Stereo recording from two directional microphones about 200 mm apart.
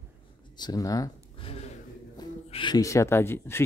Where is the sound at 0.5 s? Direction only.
20° left (ahead or behind).